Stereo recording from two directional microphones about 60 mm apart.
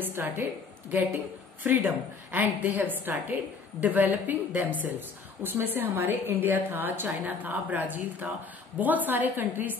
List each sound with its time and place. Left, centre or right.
0.0 s a woman's voice: right
1.6 s a woman's voice: right